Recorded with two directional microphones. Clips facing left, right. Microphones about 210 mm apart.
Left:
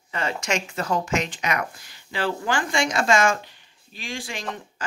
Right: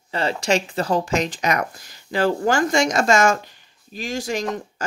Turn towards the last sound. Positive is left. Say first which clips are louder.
# right 8 dB
turn(degrees=-40)  # may be behind; listen again after turning